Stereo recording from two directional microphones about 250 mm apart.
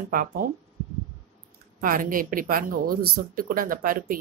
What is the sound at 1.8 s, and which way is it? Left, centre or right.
A woman's voice, right.